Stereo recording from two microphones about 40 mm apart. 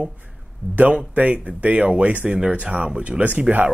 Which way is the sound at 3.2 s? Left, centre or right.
Right.